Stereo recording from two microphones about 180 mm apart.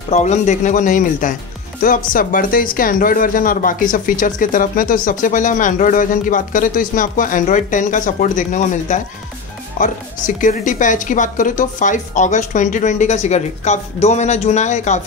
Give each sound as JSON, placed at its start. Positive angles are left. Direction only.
{"t": 0.1, "sound": "speech", "side_deg": 40}
{"t": 10.2, "sound": "speech", "side_deg": 45}